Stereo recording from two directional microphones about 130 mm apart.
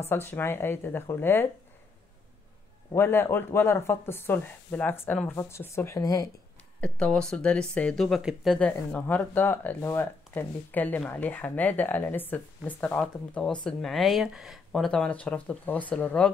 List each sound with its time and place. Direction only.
0.0 s speech: 15° left (ahead or behind)
2.9 s speech: 15° left (ahead or behind)
6.8 s speech: 5° left (ahead or behind)
8.5 s speech: 10° left (ahead or behind)